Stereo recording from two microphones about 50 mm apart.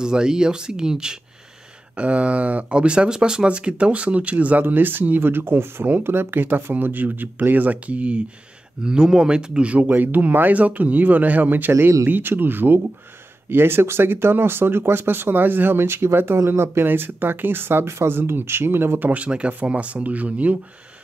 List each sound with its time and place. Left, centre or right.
0.0 s speech: centre
2.0 s speech: right
8.8 s speech: centre
9.8 s speech: right
18.9 s speech: right